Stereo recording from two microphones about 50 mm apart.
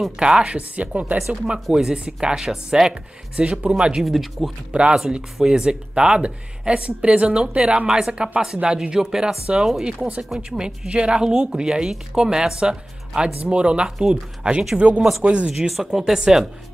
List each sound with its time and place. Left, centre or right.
0.2 s speech: centre
0.6 s speech: right
1.2 s speech: centre
4.0 s speech: centre
5.0 s speech: centre
10.9 s speech: right
15.5 s speech: centre